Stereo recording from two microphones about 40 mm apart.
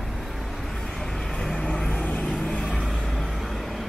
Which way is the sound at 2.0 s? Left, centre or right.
Left.